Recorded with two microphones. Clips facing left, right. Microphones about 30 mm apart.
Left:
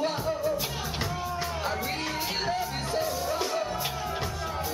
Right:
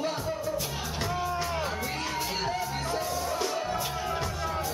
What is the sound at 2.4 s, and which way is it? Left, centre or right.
Music, centre.